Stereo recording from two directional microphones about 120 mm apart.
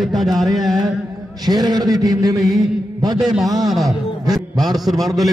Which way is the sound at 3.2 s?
Centre (ahead or behind).